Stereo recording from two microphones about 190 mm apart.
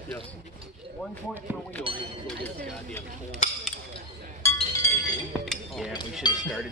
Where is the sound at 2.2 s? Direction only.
10° left (ahead or behind).